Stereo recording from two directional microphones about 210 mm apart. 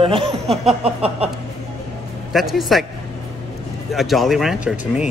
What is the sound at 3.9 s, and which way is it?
Speech, centre (ahead or behind).